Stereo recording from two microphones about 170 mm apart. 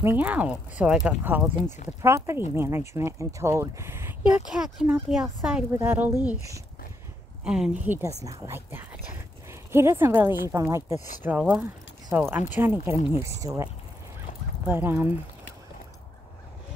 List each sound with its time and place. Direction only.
0.0 s speech: 10° right (ahead or behind)
4.5 s speech: centre (ahead or behind)
5.7 s speech: 15° right (ahead or behind)
7.4 s speech: 5° right (ahead or behind)
11.2 s speech: 5° right (ahead or behind)
14.7 s speech: 15° right (ahead or behind)